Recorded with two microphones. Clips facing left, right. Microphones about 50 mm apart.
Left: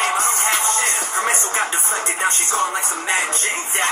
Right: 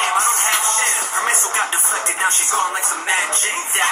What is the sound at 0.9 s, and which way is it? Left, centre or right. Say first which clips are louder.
Music: right 1 dB; centre.